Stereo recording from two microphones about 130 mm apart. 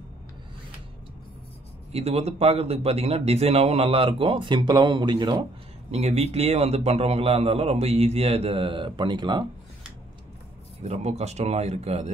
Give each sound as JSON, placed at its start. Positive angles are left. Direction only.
{"t": 1.9, "sound": "a man's voice", "side_deg": -55}
{"t": 5.9, "sound": "a man's voice", "side_deg": -55}
{"t": 10.8, "sound": "speech", "side_deg": -55}